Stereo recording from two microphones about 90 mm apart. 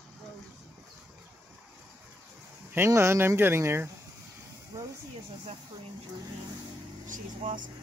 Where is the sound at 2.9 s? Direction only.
30° right (ahead or behind).